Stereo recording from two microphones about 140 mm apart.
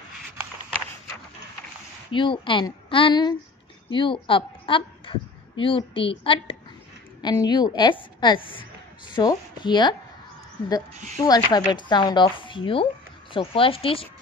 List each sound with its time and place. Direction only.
2.1 s a woman's voice: 35° left (ahead or behind)
11.2 s a woman's voice: 30° left (ahead or behind)